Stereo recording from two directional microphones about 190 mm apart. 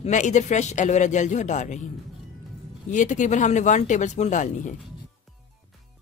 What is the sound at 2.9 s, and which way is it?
Speech, 40° left (ahead or behind).